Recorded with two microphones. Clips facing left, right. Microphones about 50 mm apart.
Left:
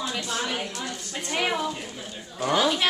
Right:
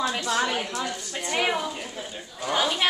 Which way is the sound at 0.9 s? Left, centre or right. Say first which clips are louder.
Right 2 dB; centre.